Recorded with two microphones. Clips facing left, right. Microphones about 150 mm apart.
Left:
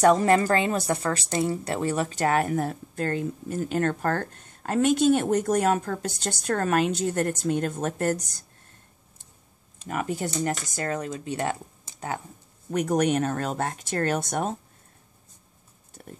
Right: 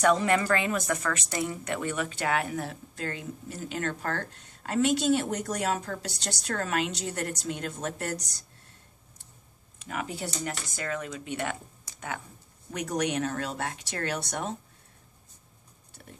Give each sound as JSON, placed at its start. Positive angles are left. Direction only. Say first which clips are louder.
{"t": 0.0, "sound": "a woman's voice", "louder": "left 5 dB", "side_deg": 40}
{"t": 9.8, "sound": "speech", "louder": "left 6 dB", "side_deg": 45}
{"t": 11.9, "sound": "a sound", "louder": "left 1 dB", "side_deg": 25}
{"t": 12.7, "sound": "a woman's voice", "louder": "left 6 dB", "side_deg": 50}